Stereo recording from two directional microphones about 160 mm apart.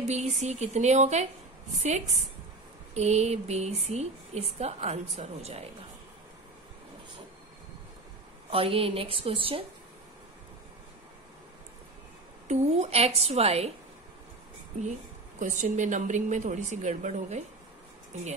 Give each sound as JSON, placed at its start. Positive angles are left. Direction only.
{"t": 0.0, "sound": "a woman's voice", "side_deg": -45}
{"t": 8.5, "sound": "a woman's voice", "side_deg": -35}
{"t": 12.4, "sound": "a woman's voice", "side_deg": -45}
{"t": 14.8, "sound": "a woman's voice", "side_deg": -50}